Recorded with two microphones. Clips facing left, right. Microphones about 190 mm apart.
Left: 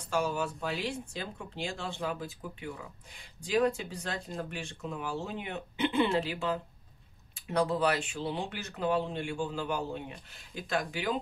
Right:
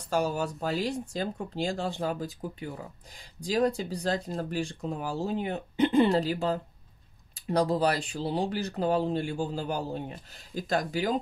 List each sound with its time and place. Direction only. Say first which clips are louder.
0.1 s speech: right 3 dB; 40° right (ahead or behind)